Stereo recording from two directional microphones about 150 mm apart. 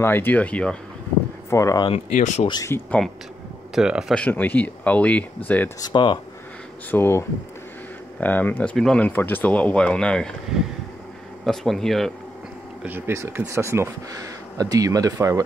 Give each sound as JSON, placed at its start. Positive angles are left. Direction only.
{"t": 0.0, "sound": "speech", "side_deg": 15}
{"t": 1.5, "sound": "speech", "side_deg": 20}
{"t": 2.1, "sound": "speech", "side_deg": 55}
{"t": 2.4, "sound": "speech", "side_deg": 30}
{"t": 2.7, "sound": "speech", "side_deg": 10}
{"t": 3.7, "sound": "speech", "side_deg": -5}
{"t": 4.1, "sound": "speech", "side_deg": 10}
{"t": 5.8, "sound": "speech", "side_deg": 30}
{"t": 6.9, "sound": "speech", "side_deg": 15}
{"t": 11.4, "sound": "speech", "side_deg": 0}
{"t": 12.8, "sound": "speech", "side_deg": -15}